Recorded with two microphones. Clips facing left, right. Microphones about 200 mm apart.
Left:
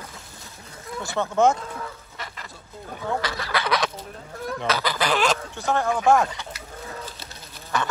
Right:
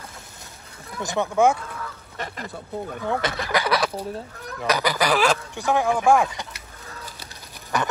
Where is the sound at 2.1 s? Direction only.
45° right (ahead or behind).